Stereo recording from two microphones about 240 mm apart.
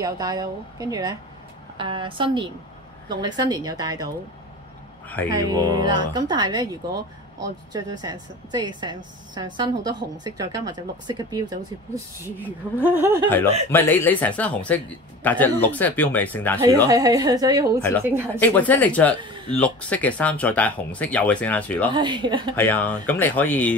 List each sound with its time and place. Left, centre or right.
0.0 s a woman's voice: centre
5.0 s a man's voice: centre
5.5 s speech: centre
13.7 s speech: centre
16.8 s speech: centre
18.4 s speech: centre
19.2 s a sound: centre
19.5 s speech: centre
21.9 s a woman's voice: centre
22.6 s speech: centre